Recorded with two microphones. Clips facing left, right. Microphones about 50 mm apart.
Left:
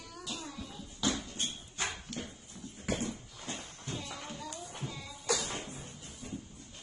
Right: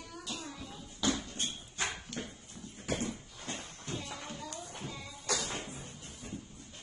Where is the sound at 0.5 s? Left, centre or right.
Centre.